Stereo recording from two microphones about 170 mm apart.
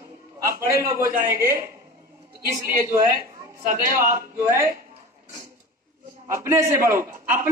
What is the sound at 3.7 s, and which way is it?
Speech, 50° right (ahead or behind).